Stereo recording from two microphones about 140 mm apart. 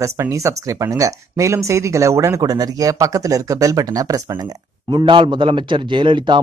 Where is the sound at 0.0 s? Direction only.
20° right (ahead or behind).